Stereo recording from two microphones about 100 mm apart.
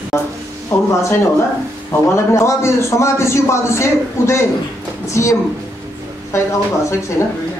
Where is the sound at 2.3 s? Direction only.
30° left (ahead or behind).